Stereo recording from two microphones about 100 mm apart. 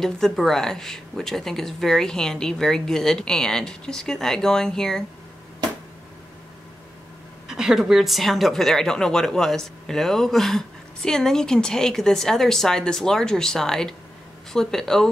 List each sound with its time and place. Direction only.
0.0 s a woman's voice: 5° left (ahead or behind)
7.4 s a woman's voice: 5° right (ahead or behind)